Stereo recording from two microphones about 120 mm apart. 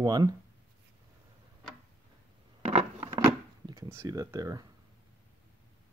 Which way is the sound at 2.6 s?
55° right (ahead or behind).